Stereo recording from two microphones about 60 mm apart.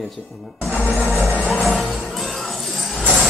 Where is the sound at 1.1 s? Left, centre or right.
Centre.